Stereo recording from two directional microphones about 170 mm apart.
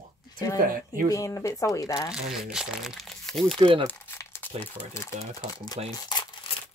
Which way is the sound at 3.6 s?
30° right (ahead or behind).